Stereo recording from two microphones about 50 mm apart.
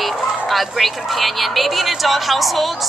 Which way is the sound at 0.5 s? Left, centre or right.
Centre.